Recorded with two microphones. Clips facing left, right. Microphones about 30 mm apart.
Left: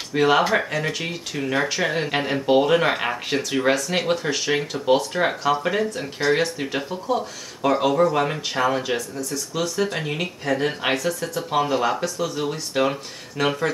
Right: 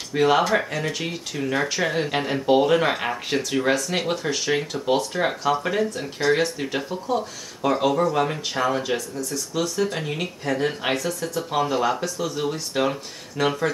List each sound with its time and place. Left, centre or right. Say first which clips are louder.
0.1 s speech: left 1 dB; centre